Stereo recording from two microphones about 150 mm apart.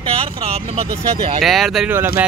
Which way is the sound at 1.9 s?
15° right (ahead or behind).